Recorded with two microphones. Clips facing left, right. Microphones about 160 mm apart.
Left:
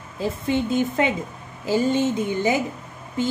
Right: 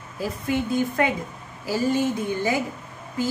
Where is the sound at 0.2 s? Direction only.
25° left (ahead or behind).